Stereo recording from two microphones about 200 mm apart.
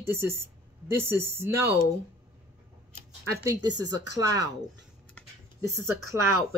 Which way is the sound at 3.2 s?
15° right (ahead or behind).